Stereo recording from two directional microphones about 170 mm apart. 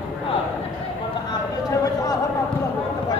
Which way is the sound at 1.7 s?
20° left (ahead or behind).